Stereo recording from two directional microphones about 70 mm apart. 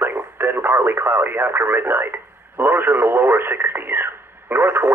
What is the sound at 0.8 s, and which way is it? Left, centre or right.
Speech, right.